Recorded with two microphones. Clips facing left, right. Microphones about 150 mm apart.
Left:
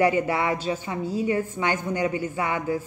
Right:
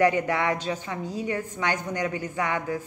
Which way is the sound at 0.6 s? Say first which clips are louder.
Left 3 dB; 20° left (ahead or behind).